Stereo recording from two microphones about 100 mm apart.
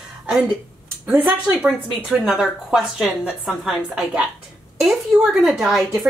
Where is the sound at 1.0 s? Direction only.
15° right (ahead or behind).